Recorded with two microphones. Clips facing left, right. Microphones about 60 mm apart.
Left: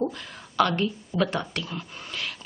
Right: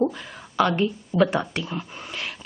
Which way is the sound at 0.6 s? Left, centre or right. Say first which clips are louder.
Right 2 dB; centre.